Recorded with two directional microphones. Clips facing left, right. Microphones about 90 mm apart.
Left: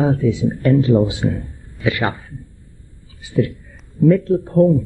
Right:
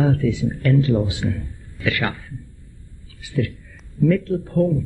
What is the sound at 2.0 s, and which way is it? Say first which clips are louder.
A man's voice: left 4 dB; 30° left (ahead or behind).